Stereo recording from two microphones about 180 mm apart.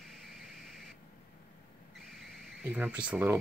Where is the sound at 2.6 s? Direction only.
10° right (ahead or behind).